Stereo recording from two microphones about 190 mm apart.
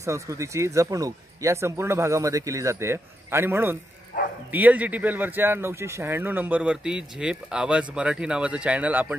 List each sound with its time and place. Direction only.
0.0 s speech: 15° right (ahead or behind)
4.1 s bow-wow: 55° left (ahead or behind)
4.5 s speech: 10° right (ahead or behind)